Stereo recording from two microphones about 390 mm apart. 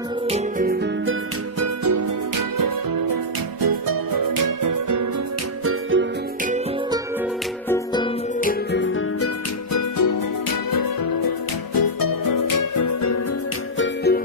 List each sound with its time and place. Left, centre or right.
0.3 s music: right
1.6 s music: right
5.7 s music: right
7.7 s music: centre; by 9.3 s left
9.7 s music: left
13.7 s music: left